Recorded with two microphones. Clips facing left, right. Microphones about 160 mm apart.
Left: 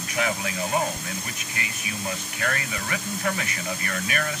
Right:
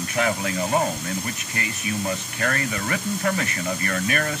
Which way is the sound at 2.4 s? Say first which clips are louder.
Right 4 dB; 45° right (ahead or behind).